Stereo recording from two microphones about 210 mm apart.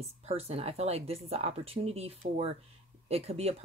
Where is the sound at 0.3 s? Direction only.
30° right (ahead or behind).